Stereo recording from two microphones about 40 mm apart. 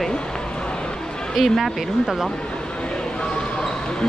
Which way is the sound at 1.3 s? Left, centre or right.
Centre.